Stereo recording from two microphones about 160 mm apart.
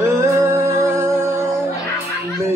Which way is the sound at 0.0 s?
20° right (ahead or behind).